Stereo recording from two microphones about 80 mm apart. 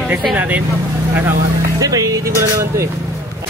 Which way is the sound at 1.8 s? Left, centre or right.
Right.